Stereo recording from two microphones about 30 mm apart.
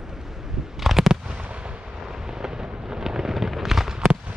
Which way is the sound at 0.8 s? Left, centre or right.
Centre.